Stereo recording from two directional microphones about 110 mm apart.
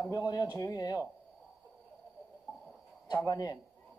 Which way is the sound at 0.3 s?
35° left (ahead or behind).